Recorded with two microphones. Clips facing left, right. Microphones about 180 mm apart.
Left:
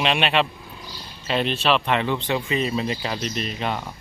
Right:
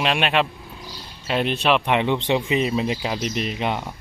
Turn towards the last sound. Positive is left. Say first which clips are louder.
# right 2 dB
turn(degrees=-15)  # may be behind; listen again after turning